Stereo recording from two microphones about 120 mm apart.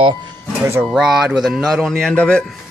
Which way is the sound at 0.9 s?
5° right (ahead or behind).